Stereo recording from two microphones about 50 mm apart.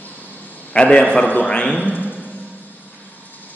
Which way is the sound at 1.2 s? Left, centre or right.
Left.